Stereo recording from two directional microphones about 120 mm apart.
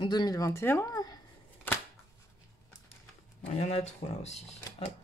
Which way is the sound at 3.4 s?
65° left (ahead or behind).